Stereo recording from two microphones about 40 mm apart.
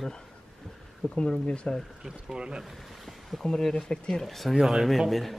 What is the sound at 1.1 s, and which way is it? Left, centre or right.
Speech, left.